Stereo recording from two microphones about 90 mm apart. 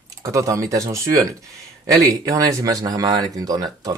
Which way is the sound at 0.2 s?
35° right (ahead or behind).